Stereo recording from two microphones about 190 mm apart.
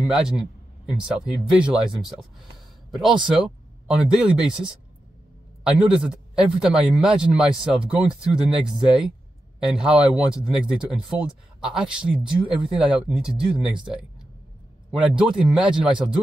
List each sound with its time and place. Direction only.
0.0 s speech: 5° right (ahead or behind)
2.9 s speech: centre (ahead or behind)
14.9 s speech: 5° right (ahead or behind)